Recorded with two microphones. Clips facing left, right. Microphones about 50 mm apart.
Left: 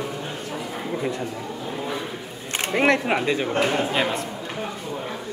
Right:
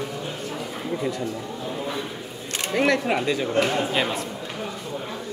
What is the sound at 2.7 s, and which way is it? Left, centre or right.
Speech, left.